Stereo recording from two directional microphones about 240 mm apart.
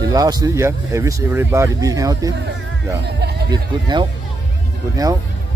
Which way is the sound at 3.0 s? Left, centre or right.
Right.